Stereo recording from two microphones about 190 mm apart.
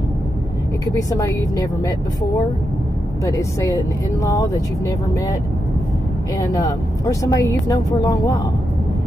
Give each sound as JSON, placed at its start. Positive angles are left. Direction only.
{"t": 0.9, "sound": "speech", "side_deg": 15}
{"t": 3.3, "sound": "speech", "side_deg": 15}
{"t": 6.3, "sound": "speech", "side_deg": 20}